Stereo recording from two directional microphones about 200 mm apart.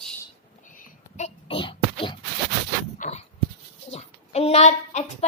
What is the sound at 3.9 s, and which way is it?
Speech, 30° left (ahead or behind).